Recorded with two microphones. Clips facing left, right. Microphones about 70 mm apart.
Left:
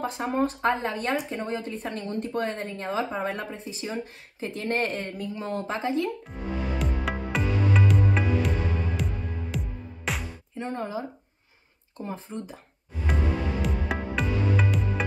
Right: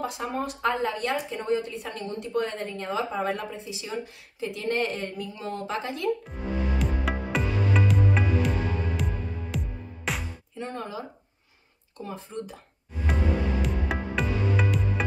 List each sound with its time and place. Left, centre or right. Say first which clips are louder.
0.0 s speech: left 4 dB; left
6.8 s music: right 1 dB; centre
10.6 s speech: left 3 dB; left
13.0 s music: right 1 dB; centre